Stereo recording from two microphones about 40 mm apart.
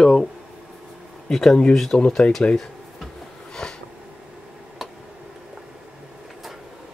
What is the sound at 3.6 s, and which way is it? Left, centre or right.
Sniff, centre.